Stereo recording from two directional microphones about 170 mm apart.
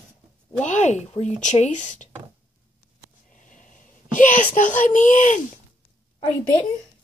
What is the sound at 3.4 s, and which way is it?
Sneeze, 50° left (ahead or behind).